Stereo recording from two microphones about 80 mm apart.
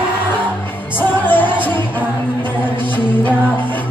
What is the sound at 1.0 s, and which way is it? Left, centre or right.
Music, left.